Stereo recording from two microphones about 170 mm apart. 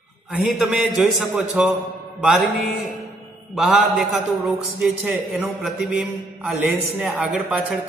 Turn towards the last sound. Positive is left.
turn(degrees=-5)  # may be behind; listen again after turning